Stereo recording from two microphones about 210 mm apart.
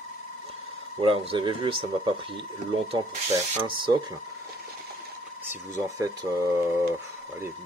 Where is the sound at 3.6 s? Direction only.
25° right (ahead or behind).